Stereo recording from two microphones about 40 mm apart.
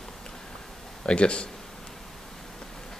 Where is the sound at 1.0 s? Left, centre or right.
Left.